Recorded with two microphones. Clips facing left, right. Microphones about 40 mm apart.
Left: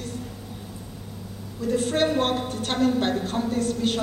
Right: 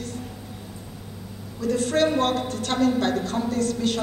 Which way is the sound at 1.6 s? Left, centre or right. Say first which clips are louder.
Right 1 dB; left.